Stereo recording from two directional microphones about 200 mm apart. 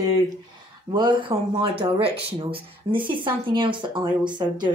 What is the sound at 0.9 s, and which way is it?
Speech, 25° right (ahead or behind).